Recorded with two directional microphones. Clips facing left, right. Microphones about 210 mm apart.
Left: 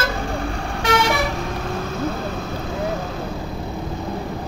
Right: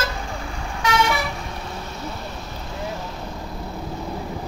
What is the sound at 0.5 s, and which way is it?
Vehicle, 65° left (ahead or behind).